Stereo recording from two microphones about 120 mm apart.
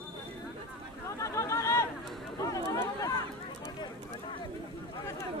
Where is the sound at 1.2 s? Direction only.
25° left (ahead or behind).